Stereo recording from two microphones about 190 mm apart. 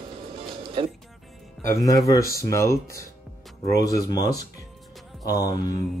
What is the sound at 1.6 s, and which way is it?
Speech, 15° left (ahead or behind).